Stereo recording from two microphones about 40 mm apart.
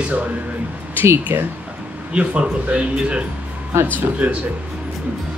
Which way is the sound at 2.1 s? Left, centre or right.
Right.